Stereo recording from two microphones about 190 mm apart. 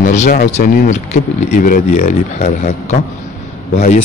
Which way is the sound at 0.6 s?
50° left (ahead or behind).